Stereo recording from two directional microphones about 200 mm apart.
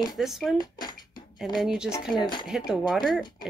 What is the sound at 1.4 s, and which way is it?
Speech, centre (ahead or behind).